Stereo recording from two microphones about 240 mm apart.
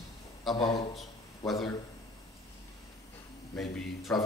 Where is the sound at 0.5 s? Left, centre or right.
Centre.